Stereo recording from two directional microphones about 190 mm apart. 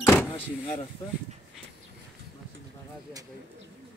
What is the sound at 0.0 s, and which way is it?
Power windows, 15° left (ahead or behind).